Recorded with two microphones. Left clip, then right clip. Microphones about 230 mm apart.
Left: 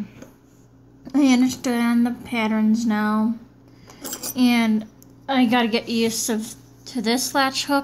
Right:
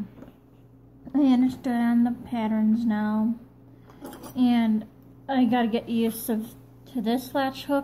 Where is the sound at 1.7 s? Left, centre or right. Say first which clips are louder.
Left 3 dB; left.